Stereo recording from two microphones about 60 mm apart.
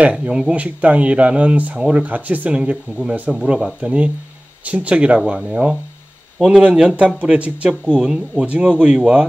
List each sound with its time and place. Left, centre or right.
0.0 s speech: right
0.3 s speech: centre
0.6 s speech: right